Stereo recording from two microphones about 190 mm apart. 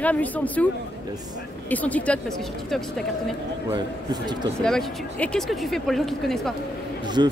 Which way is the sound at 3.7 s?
20° right (ahead or behind).